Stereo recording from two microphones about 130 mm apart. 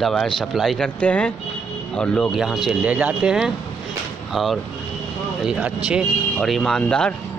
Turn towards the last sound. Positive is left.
turn(degrees=5)  # may be behind; listen again after turning